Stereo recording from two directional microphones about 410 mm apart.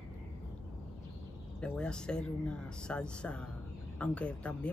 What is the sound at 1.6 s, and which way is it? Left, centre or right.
Speech, centre.